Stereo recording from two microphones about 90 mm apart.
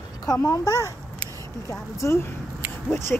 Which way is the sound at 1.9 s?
30° left (ahead or behind).